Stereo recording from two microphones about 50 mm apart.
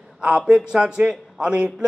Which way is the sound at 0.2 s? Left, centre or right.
Right.